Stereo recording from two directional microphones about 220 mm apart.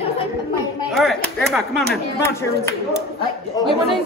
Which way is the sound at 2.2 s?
10° left (ahead or behind).